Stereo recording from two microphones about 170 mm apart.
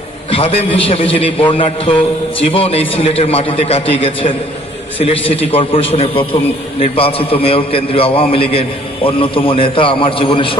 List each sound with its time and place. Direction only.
0.3 s a man's voice: 35° left (ahead or behind)